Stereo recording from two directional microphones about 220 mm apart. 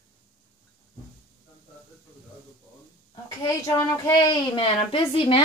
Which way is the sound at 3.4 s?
15° left (ahead or behind).